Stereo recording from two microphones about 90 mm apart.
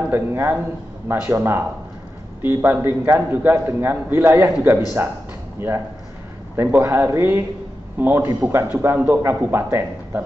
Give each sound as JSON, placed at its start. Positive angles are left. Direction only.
{"t": 0.1, "sound": "speech", "side_deg": -25}
{"t": 6.5, "sound": "speech", "side_deg": -30}